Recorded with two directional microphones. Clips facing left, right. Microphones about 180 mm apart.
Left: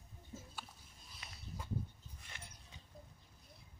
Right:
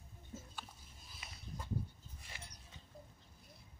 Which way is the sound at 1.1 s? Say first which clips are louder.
Right 1 dB; centre (ahead or behind).